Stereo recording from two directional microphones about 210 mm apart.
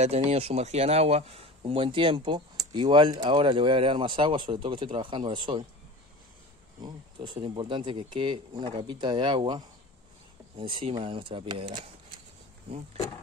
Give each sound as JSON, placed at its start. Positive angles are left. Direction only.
{"t": 0.0, "sound": "speech", "side_deg": -30}
{"t": 6.8, "sound": "speech", "side_deg": -25}